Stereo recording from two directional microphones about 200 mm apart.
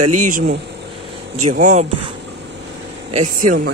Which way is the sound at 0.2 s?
40° right (ahead or behind).